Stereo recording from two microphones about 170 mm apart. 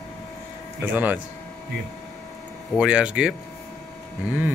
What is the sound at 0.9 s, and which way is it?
Speech, 10° right (ahead or behind).